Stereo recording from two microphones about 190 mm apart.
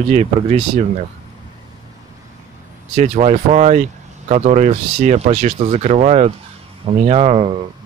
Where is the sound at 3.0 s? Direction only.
35° right (ahead or behind).